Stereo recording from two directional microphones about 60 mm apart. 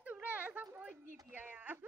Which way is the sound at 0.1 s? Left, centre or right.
Right.